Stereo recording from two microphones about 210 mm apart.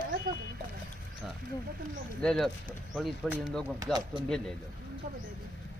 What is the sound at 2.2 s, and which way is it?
Speech, centre (ahead or behind).